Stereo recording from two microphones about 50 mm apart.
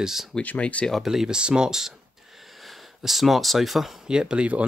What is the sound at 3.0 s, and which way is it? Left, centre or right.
Speech, centre.